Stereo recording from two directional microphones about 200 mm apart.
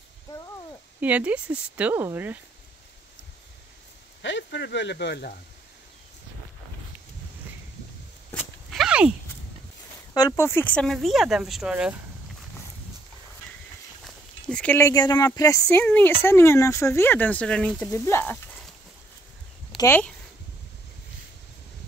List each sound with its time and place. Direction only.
1.0 s speech: 5° right (ahead or behind)
4.2 s speech: 60° left (ahead or behind)
8.3 s a sound: centre (ahead or behind)
10.1 s speech: 15° left (ahead or behind); by 11.9 s 5° right (ahead or behind)
14.0 s speech: 5° left (ahead or behind)
19.8 s speech: 10° left (ahead or behind)